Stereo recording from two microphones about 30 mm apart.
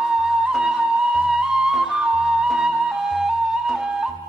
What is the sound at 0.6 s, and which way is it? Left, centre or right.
Music, centre.